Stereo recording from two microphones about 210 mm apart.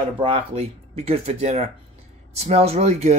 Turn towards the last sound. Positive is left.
turn(degrees=-30)  # may be behind; listen again after turning